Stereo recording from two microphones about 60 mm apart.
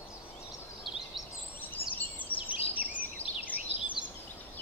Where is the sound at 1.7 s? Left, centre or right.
Left.